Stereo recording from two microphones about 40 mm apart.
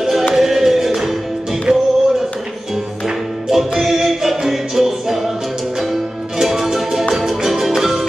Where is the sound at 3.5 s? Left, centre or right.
Centre.